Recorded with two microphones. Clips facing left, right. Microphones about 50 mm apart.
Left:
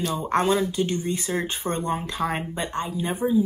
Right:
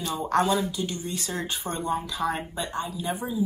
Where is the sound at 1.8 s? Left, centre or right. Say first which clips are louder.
Right 1 dB; left.